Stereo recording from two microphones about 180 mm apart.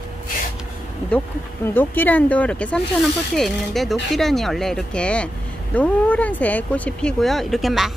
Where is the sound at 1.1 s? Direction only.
10° left (ahead or behind).